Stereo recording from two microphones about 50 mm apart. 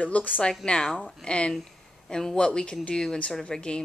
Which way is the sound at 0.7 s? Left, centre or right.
Centre.